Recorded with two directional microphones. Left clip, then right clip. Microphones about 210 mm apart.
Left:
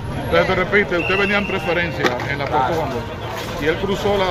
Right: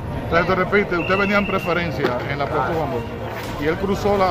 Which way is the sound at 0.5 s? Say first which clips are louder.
Left 1 dB; 30° right (ahead or behind).